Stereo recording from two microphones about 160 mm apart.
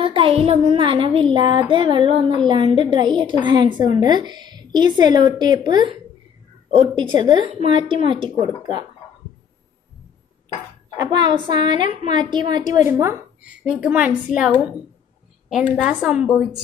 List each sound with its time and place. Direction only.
0.0 s child singing: 35° right (ahead or behind)
3.4 s a woman's voice: 30° right (ahead or behind)
11.0 s a woman's voice: 30° right (ahead or behind)
13.0 s a woman's voice: 10° right (ahead or behind)
15.5 s a woman's voice: 5° right (ahead or behind)